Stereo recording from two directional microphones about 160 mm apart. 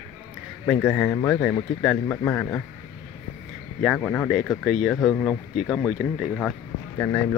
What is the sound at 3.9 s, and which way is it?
Speech, 10° left (ahead or behind).